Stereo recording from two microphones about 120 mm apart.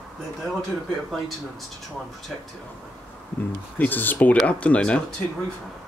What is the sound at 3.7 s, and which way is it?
Speech, 15° left (ahead or behind).